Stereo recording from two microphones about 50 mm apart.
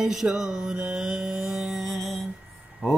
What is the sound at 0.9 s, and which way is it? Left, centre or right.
Music, centre.